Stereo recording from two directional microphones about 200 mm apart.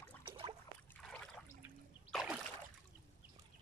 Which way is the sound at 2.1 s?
Centre (ahead or behind).